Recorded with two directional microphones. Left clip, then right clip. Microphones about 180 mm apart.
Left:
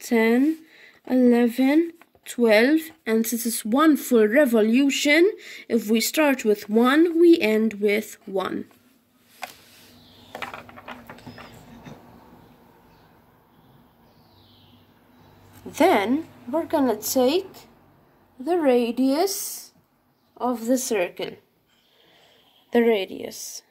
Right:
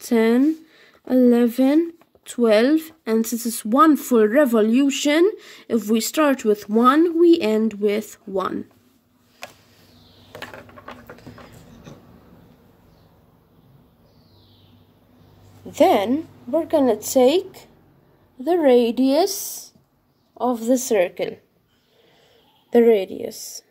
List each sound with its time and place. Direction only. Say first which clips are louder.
0.0 s speech: right 2 dB; 30° right (ahead or behind)
15.7 s speech: right 3 dB; 15° right (ahead or behind)
18.4 s a woman's voice: right 5 dB; 65° right (ahead or behind)
19.2 s a woman's voice: right 2 dB; 35° right (ahead or behind)